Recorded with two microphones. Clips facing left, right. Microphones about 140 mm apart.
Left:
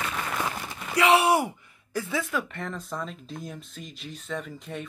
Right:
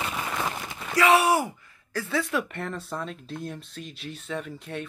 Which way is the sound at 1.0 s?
20° left (ahead or behind).